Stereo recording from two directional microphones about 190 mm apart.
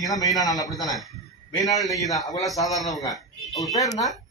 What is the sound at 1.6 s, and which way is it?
A man's voice, 15° left (ahead or behind).